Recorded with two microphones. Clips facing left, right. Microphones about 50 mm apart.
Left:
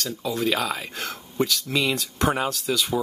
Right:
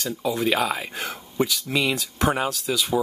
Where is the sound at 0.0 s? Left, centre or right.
Centre.